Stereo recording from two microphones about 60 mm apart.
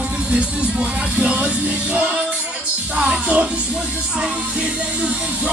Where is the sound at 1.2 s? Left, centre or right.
Centre.